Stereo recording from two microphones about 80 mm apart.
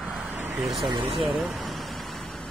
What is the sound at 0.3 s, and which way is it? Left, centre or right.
Vehicle, right.